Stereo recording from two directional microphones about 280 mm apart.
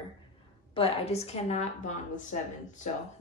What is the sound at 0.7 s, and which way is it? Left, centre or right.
A woman's voice, left.